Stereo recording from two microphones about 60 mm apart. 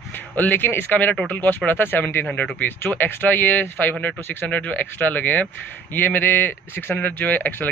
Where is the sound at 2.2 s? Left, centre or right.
Left.